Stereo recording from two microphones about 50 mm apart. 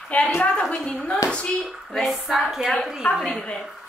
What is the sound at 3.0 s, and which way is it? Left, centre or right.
Speech, left.